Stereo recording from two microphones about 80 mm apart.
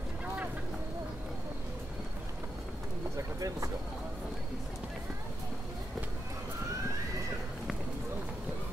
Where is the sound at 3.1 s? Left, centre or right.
Right.